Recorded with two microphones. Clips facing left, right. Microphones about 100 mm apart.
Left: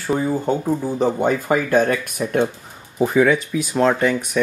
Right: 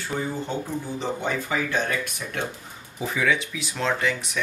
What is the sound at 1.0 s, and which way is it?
Speech, 45° left (ahead or behind).